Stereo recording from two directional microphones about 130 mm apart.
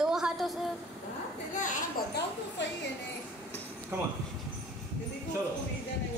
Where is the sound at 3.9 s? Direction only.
15° right (ahead or behind).